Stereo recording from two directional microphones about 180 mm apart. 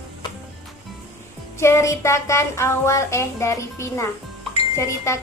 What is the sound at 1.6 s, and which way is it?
Speech, 15° left (ahead or behind).